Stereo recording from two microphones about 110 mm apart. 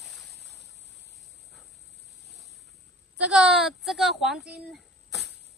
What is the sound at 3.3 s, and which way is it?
A woman's voice, 5° right (ahead or behind).